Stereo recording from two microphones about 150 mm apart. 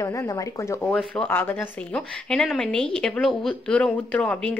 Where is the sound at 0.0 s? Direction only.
20° left (ahead or behind).